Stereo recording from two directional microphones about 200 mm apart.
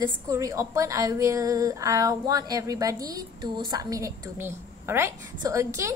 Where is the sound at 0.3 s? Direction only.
15° right (ahead or behind).